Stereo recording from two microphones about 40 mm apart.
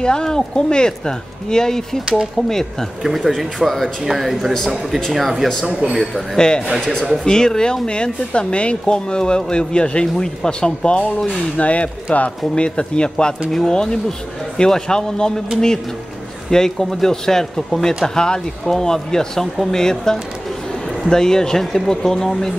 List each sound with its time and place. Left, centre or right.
0.0 s speech: centre
3.0 s speech: centre
3.3 s speech: centre
4.0 s speech: centre
5.7 s a man's voice: right
6.3 s speech: left
11.5 s speech: left
13.5 s speech: centre
16.4 s speech: centre